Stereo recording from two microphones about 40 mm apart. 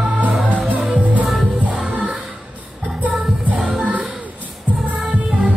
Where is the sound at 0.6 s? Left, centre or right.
Right.